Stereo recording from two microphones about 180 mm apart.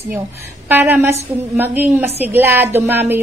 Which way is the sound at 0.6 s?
10° right (ahead or behind).